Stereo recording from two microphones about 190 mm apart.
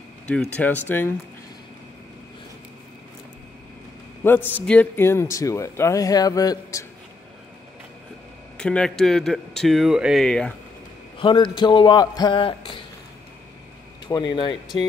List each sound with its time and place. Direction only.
0.4 s speech: 10° left (ahead or behind)
4.2 s speech: 10° left (ahead or behind)
8.5 s speech: 5° left (ahead or behind)
11.1 s a man's voice: 25° left (ahead or behind)
14.0 s a man's voice: 25° left (ahead or behind)